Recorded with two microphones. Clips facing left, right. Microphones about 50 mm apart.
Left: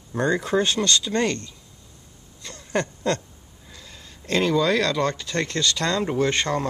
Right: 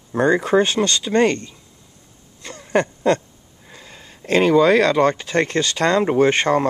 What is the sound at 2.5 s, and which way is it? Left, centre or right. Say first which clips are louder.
Owl: right 6 dB; centre.